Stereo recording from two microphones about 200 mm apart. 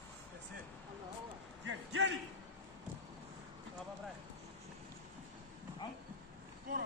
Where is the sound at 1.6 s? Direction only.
70° right (ahead or behind).